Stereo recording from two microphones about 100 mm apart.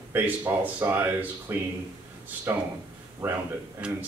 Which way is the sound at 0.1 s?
20° right (ahead or behind).